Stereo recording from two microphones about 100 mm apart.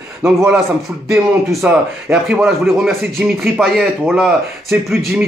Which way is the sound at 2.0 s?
15° right (ahead or behind).